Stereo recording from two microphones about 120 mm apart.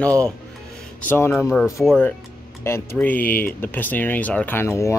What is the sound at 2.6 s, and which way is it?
Speech, 20° left (ahead or behind).